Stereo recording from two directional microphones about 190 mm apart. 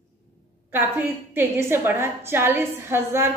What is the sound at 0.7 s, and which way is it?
A woman's voice, 10° right (ahead or behind).